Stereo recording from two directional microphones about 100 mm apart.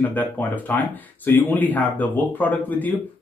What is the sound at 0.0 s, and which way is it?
Speech, 15° left (ahead or behind).